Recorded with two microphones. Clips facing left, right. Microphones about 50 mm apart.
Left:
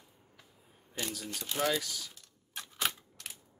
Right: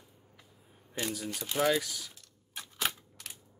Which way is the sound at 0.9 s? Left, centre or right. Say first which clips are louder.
Right 3 dB; centre.